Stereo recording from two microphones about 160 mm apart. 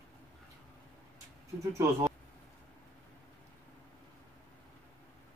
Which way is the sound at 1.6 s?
20° right (ahead or behind).